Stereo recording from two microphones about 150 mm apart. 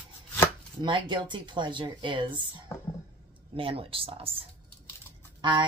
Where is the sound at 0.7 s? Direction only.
30° right (ahead or behind).